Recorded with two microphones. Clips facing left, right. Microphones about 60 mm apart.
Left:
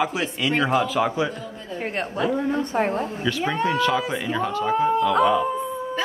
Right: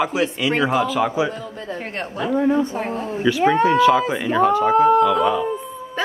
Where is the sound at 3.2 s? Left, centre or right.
Centre.